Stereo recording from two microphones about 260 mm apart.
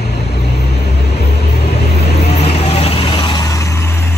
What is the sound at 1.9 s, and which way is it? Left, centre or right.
Vehicle, left.